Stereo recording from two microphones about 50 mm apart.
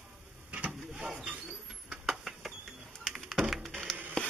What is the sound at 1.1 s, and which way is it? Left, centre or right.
Speech, right.